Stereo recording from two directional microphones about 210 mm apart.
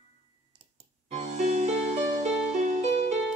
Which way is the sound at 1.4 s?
35° right (ahead or behind).